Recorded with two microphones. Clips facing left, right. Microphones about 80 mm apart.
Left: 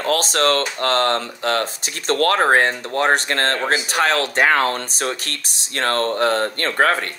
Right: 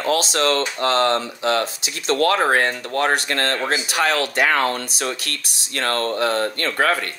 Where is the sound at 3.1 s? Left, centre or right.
Left.